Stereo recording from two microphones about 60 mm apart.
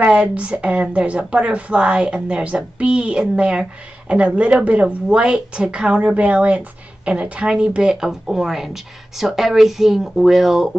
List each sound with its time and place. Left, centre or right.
0.0 s a woman's voice: centre